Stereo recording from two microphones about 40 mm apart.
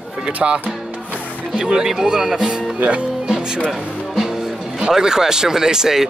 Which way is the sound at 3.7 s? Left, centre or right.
Centre.